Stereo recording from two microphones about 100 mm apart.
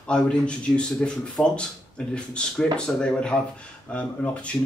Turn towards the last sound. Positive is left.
turn(degrees=15)  # may be behind; listen again after turning